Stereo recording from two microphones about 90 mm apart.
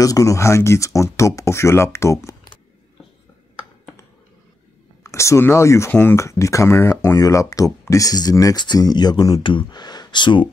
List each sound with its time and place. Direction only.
0.0 s speech: 40° left (ahead or behind)
5.0 s speech: 35° left (ahead or behind); by 9.4 s 50° left (ahead or behind)
9.4 s speech: 65° left (ahead or behind)